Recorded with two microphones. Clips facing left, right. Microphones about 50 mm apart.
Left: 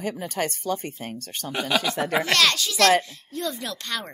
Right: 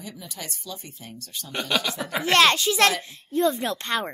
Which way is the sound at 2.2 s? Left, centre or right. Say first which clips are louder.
Right 7 dB; right.